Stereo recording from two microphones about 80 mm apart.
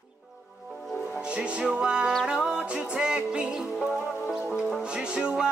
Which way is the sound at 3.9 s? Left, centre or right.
Left.